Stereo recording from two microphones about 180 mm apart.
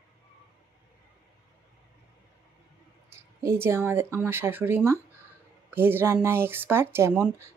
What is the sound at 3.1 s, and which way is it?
Speech, 15° right (ahead or behind).